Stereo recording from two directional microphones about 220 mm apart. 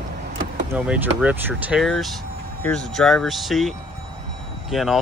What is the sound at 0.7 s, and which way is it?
Speech, 5° right (ahead or behind).